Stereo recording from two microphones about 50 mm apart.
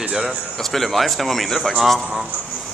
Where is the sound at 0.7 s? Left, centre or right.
Centre.